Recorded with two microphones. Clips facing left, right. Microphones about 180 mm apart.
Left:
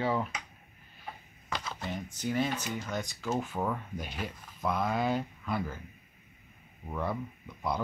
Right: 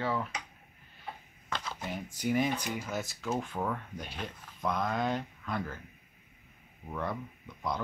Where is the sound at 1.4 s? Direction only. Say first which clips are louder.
Left 1 dB; 5° left (ahead or behind).